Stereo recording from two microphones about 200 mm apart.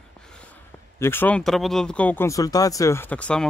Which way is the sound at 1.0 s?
10° left (ahead or behind).